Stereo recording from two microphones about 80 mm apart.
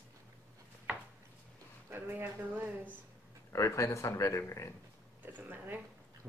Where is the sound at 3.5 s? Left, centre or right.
Left.